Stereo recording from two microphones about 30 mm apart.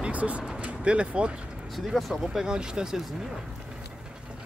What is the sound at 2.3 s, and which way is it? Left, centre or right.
Speech, right.